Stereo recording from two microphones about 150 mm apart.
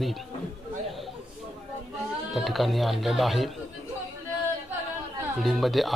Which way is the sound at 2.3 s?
Centre (ahead or behind).